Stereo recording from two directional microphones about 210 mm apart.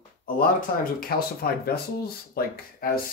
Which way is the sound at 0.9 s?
45° left (ahead or behind).